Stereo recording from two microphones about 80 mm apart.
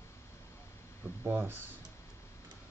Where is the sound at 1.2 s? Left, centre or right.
Right.